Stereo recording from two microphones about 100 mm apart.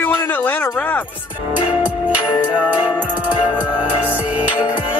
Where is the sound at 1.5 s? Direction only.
15° right (ahead or behind).